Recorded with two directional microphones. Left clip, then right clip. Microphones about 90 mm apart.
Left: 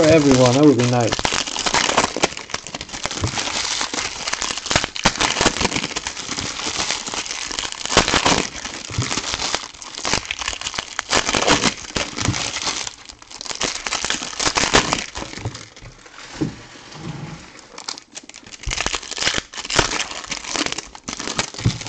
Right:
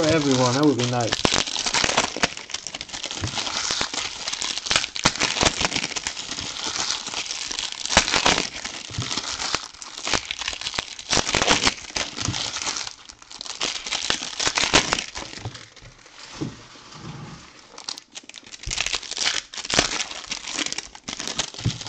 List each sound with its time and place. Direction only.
0.0 s speech: 20° left (ahead or behind)
0.6 s crumpling: 15° left (ahead or behind)
3.1 s a sound: 25° left (ahead or behind)
3.5 s crumpling: 15° left (ahead or behind)
5.6 s a sound: 5° right (ahead or behind)
6.1 s crumpling: 25° left (ahead or behind); by 8.7 s 5° left (ahead or behind)
8.9 s crumpling: 25° left (ahead or behind)
10.2 s crumpling: 5° left (ahead or behind)
12.1 s crumpling: 20° left (ahead or behind)
18.7 s crumpling: 5° left (ahead or behind)
21.5 s a sound: 25° left (ahead or behind)